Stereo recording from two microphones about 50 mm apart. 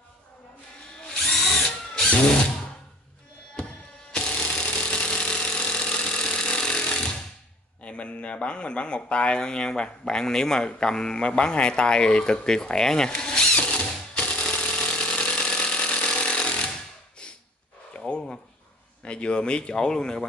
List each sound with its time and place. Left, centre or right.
1.0 s drill: centre
4.1 s engine: left
7.8 s speech: left
10.7 s a sound: centre
17.9 s a sound: left
19.0 s speech: left